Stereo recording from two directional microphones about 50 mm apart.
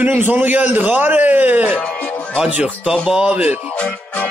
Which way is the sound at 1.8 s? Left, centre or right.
Left.